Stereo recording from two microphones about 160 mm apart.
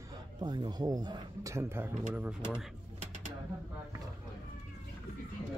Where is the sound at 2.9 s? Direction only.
45° right (ahead or behind).